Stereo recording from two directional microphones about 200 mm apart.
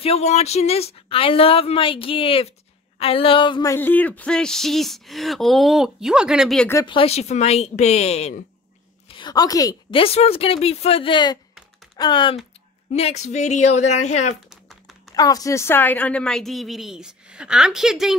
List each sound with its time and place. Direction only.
0.0 s speech: 30° left (ahead or behind)
3.7 s speech: 10° left (ahead or behind)
6.7 s speech: 20° left (ahead or behind)
9.1 s speech: 20° left (ahead or behind)
14.5 s typing: centre (ahead or behind)
15.1 s speech: 20° left (ahead or behind); by 18.1 s centre (ahead or behind)